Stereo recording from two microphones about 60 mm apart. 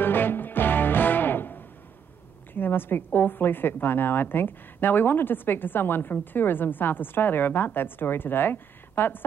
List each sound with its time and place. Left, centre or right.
0.0 s music: left
2.5 s a woman's voice: left